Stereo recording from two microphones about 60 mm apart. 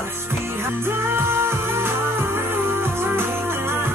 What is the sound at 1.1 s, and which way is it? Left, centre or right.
Music, right.